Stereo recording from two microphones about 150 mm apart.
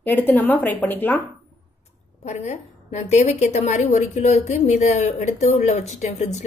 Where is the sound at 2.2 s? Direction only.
50° left (ahead or behind).